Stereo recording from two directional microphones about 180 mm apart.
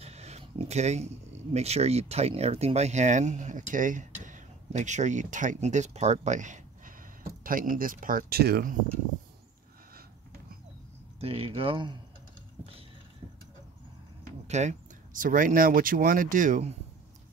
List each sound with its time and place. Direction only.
0.0 s speech: 35° right (ahead or behind); by 8.7 s 60° right (ahead or behind)
11.1 s speech: 35° right (ahead or behind)
12.6 s a sound: 10° right (ahead or behind)
14.5 s speech: 40° right (ahead or behind)